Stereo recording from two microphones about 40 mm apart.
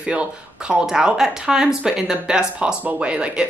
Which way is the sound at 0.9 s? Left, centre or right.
Centre.